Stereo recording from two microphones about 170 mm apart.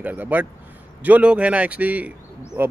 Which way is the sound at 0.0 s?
10° right (ahead or behind).